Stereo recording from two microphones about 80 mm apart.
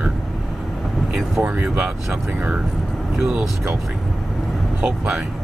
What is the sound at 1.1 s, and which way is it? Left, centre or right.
Speech, centre.